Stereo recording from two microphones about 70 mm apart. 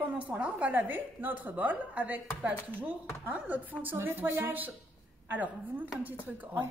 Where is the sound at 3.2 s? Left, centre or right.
Right.